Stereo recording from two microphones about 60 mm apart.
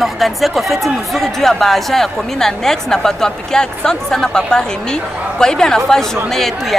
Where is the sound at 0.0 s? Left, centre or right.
Centre.